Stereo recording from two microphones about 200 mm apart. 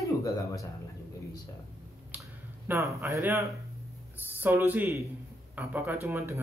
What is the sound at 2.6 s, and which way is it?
Speech, 15° right (ahead or behind).